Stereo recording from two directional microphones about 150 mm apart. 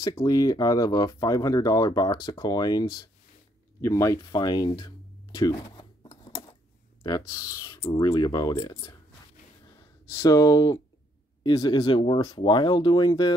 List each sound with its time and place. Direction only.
0.0 s speech: 25° left (ahead or behind)
6.0 s a sound: 30° left (ahead or behind)
7.0 s speech: 25° left (ahead or behind)
10.1 s speech: 25° left (ahead or behind)